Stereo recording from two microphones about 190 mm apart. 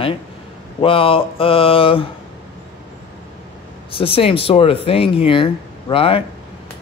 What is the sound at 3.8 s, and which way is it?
A man's voice, 30° left (ahead or behind).